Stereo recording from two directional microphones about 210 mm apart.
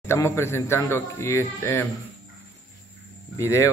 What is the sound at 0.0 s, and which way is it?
A man's voice, 10° left (ahead or behind).